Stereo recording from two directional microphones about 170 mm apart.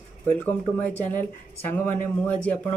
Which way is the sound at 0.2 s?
10° left (ahead or behind).